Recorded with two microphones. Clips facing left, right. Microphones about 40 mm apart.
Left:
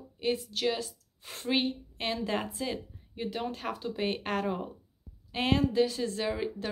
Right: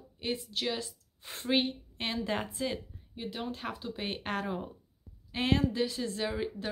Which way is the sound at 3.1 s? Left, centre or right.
Centre.